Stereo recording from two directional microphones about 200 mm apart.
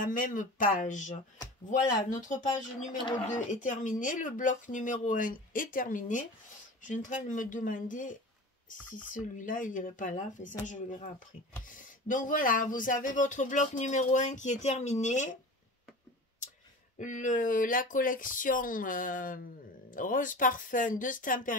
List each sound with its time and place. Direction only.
0.0 s speech: 40° left (ahead or behind)
3.6 s speech: 40° left (ahead or behind)
9.4 s speech: 40° left (ahead or behind)
17.0 s speech: 40° left (ahead or behind)